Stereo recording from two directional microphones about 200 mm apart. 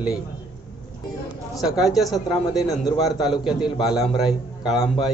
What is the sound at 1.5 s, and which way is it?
A man's voice, centre (ahead or behind).